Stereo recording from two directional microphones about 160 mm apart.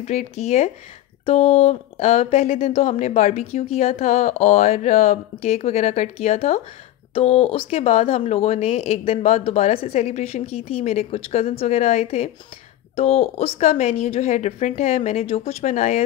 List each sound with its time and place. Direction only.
0.0 s speech: 45° left (ahead or behind)